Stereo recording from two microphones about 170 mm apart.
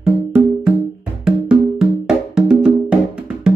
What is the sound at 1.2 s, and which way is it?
Music, 5° right (ahead or behind).